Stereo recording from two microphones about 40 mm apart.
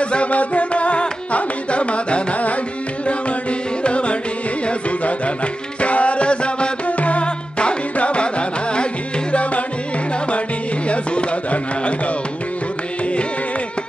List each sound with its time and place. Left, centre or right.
0.0 s music: left
3.8 s carnatic music: left
4.6 s music: left
10.9 s chopping: left